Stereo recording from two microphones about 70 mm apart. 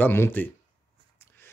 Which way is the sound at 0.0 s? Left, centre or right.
Left.